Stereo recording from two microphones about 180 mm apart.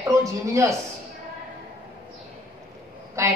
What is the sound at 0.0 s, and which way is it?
Speech, 15° right (ahead or behind).